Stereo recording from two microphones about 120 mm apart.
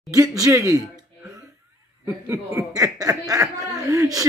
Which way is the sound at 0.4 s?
25° right (ahead or behind).